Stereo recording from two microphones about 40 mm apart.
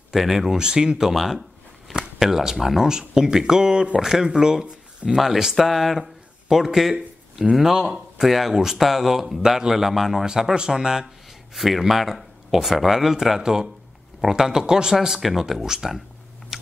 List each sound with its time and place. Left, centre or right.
0.1 s speech: centre
5.1 s speech: centre
11.5 s speech: centre
15.0 s speech: centre